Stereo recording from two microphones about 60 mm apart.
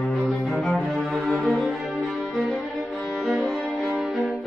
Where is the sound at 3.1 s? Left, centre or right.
Centre.